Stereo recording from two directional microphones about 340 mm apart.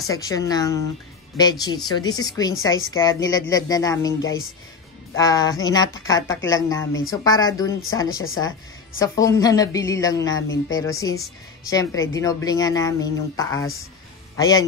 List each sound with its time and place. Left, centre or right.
0.1 s speech: centre
5.1 s a man's voice: centre